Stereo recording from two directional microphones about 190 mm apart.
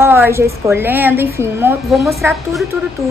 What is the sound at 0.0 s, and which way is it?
A woman's voice, 10° right (ahead or behind).